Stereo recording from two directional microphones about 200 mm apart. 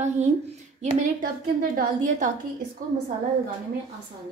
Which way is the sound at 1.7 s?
40° right (ahead or behind).